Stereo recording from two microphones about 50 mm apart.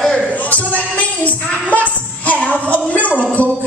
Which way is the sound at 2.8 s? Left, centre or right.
Left.